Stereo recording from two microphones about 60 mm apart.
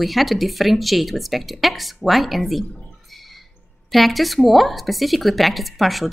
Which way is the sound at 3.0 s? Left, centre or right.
Centre.